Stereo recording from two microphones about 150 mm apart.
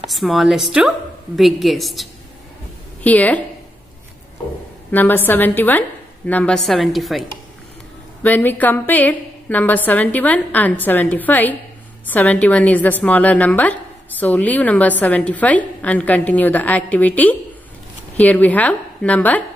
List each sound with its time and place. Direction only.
0.1 s a woman's voice: centre (ahead or behind)
4.9 s a woman's voice: 15° left (ahead or behind)
8.2 s a woman's voice: 10° left (ahead or behind)